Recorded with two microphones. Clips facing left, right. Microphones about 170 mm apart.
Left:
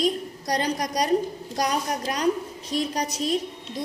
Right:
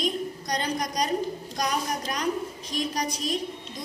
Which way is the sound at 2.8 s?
30° left (ahead or behind).